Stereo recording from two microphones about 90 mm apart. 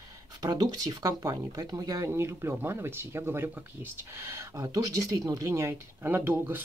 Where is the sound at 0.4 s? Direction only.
45° right (ahead or behind).